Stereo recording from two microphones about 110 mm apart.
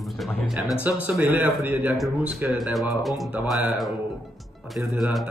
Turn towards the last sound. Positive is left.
turn(degrees=0)  # may be behind; listen again after turning